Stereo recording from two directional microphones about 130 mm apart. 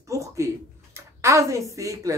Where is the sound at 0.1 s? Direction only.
25° right (ahead or behind).